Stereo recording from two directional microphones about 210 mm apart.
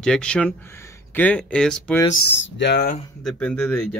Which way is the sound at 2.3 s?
55° left (ahead or behind).